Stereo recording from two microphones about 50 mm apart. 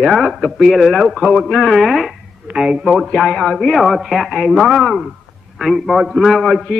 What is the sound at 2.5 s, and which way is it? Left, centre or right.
Speech, right.